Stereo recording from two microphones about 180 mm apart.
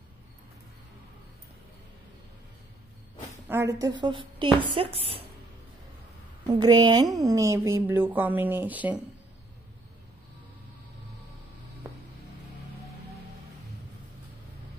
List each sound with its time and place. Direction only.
3.4 s a woman's voice: 15° right (ahead or behind)
4.0 s a woman's voice: 25° right (ahead or behind)
6.6 s a woman's voice: 25° right (ahead or behind)